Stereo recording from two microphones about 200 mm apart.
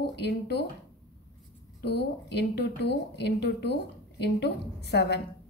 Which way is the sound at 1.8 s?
55° left (ahead or behind).